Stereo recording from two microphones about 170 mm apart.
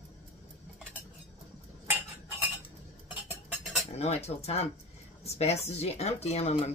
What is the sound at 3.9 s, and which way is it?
A woman's voice, 40° left (ahead or behind).